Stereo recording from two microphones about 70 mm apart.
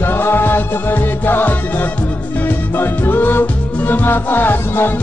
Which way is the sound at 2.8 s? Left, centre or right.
Left.